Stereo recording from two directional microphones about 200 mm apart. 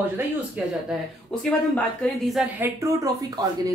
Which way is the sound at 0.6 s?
5° right (ahead or behind).